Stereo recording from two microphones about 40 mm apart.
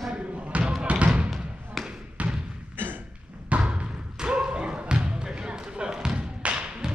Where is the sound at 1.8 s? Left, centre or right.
Centre.